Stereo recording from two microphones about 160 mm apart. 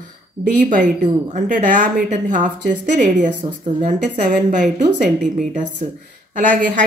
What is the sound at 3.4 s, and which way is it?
Speech, 25° right (ahead or behind).